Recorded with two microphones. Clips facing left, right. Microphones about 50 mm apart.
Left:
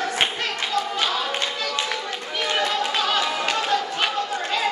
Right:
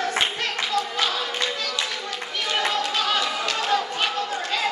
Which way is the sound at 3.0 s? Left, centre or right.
Centre.